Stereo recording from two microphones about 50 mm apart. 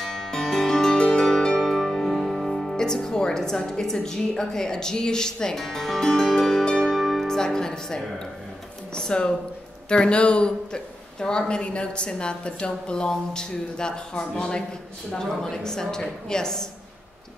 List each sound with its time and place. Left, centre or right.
0.0 s music: centre
1.2 s speech: centre
6.6 s music: centre
8.9 s a woman's voice: centre